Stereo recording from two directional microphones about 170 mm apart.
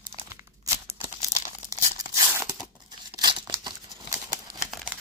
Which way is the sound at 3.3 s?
25° right (ahead or behind).